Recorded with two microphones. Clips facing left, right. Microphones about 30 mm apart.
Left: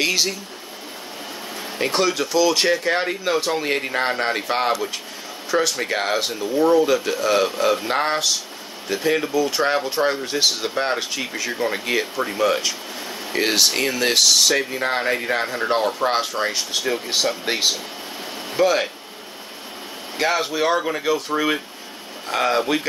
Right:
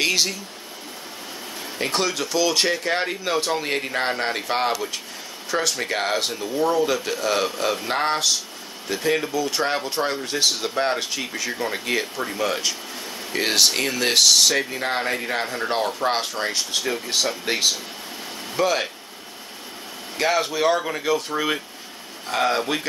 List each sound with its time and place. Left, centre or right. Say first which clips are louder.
0.0 s speech: left 1 dB; centre
1.8 s speech: left 3 dB; centre
20.2 s speech: left 1 dB; centre